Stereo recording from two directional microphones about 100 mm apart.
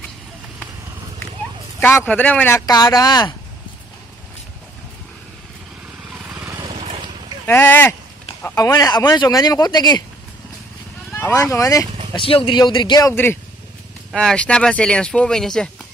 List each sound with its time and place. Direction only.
1.8 s speech: 20° left (ahead or behind)
2.6 s speech: 40° left (ahead or behind)
6.1 s vehicle: 10° right (ahead or behind)
6.6 s vehicle: 70° right (ahead or behind)
7.4 s speech: 20° left (ahead or behind)
8.5 s speech: 35° left (ahead or behind)
11.3 s speech: 35° left (ahead or behind)
12.2 s speech: 65° left (ahead or behind)
12.5 s speech: 50° left (ahead or behind)
13.1 s speech: 20° left (ahead or behind)
14.1 s speech: 10° left (ahead or behind)